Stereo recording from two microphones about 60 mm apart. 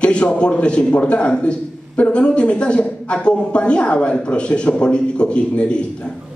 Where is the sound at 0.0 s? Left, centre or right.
Centre.